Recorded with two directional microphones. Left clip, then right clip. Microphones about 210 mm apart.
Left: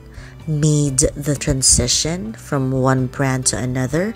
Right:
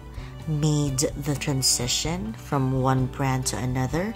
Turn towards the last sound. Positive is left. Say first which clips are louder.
# left 7 dB
turn(degrees=20)  # may be behind; listen again after turning